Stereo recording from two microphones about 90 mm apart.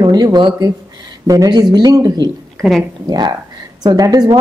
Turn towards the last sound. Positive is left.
turn(degrees=-45)  # may be behind; listen again after turning